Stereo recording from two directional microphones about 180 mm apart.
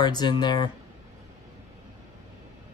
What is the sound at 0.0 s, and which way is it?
Speech, 25° left (ahead or behind).